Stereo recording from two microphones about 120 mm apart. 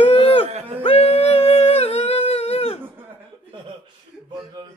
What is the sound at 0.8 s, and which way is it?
Humming, 60° left (ahead or behind).